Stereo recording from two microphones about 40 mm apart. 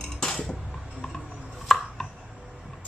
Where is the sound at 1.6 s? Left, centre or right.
Centre.